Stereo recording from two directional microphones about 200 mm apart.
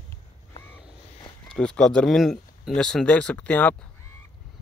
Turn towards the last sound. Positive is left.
turn(degrees=5)  # may be behind; listen again after turning